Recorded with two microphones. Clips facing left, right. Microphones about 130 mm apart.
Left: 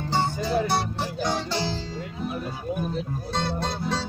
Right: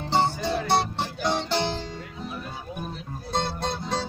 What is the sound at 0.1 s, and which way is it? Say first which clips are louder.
Music: right 1 dB; 25° right (ahead or behind).